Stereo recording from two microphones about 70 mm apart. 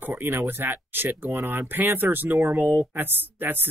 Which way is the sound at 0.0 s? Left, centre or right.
Right.